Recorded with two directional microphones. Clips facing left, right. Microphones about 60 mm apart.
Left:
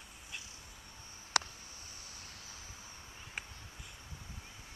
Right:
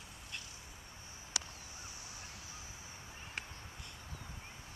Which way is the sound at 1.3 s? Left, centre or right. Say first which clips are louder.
Left 10 dB; left.